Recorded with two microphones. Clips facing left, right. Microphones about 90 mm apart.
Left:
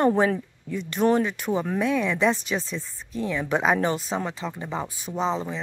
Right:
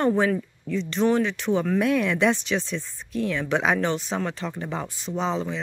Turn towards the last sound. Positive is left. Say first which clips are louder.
# even
turn(degrees=0)  # may be behind; listen again after turning